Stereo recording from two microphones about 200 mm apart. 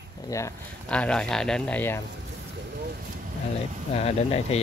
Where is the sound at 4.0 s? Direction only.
30° left (ahead or behind).